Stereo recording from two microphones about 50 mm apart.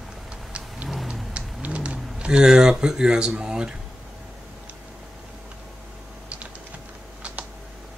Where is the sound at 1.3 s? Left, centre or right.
Right.